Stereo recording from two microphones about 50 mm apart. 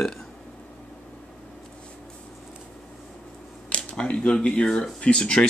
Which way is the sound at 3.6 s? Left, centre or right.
Left.